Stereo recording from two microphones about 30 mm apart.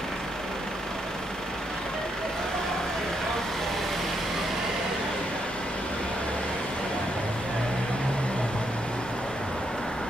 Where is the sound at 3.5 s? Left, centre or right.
Centre.